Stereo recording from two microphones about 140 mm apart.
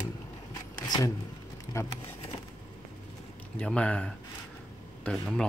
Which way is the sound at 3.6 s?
10° left (ahead or behind).